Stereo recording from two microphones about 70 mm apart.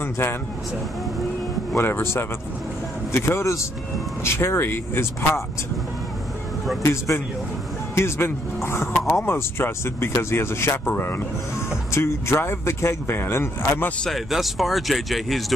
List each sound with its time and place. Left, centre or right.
0.0 s speech: left
1.8 s speech: left
6.8 s speech: left
10.9 s speech: left
14.3 s speech: centre